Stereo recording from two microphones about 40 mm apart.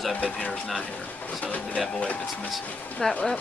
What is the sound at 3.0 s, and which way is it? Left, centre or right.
Speech, centre.